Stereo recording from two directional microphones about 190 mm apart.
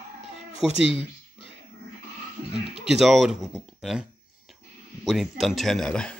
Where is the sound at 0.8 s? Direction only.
30° left (ahead or behind).